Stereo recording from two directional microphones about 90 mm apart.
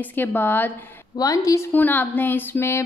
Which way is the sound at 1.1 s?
40° left (ahead or behind).